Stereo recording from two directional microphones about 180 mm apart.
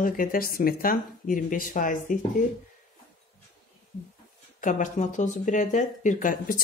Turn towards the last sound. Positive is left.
turn(degrees=50)  # may be behind; listen again after turning